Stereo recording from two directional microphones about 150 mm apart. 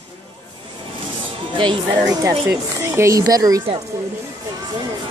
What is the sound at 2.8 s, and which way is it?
Speech, 20° right (ahead or behind).